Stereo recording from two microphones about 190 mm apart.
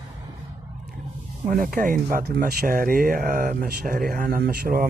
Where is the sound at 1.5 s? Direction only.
50° right (ahead or behind).